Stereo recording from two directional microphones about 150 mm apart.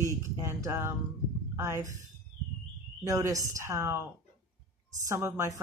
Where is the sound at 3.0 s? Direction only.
20° right (ahead or behind).